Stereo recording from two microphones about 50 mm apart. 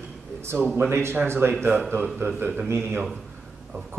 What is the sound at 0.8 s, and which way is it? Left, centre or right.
Speech, right.